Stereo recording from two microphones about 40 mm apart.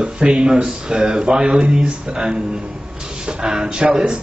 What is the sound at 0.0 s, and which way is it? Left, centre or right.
A man's voice, right.